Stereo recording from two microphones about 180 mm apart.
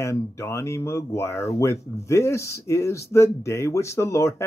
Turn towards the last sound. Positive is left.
turn(degrees=15)  # may be behind; listen again after turning